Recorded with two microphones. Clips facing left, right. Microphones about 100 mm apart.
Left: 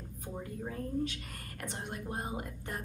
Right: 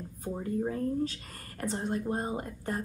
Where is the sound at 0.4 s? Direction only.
35° right (ahead or behind).